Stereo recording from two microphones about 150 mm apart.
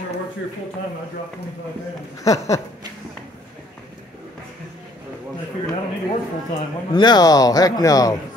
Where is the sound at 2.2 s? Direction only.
20° left (ahead or behind).